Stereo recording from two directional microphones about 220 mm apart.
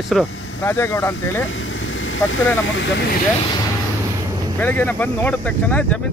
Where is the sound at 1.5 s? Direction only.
60° left (ahead or behind).